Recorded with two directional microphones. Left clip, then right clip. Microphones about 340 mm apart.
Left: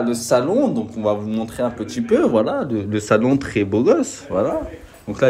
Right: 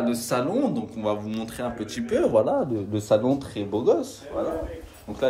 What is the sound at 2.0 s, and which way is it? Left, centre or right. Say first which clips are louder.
Speech: left 4 dB; centre.